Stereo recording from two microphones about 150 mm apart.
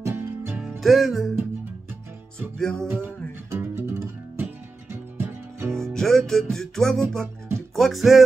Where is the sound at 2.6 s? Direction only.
5° left (ahead or behind).